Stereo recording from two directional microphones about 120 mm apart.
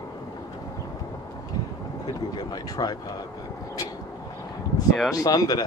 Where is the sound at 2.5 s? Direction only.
35° left (ahead or behind).